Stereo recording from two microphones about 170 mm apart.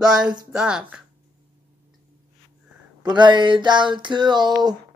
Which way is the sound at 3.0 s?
25° right (ahead or behind).